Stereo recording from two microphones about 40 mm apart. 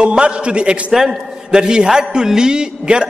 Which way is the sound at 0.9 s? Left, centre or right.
Centre.